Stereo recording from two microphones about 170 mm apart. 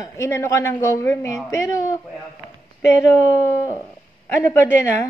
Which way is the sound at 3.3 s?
20° left (ahead or behind).